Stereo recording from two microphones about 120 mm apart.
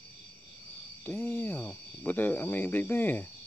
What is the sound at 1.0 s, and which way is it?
Speech, 20° left (ahead or behind).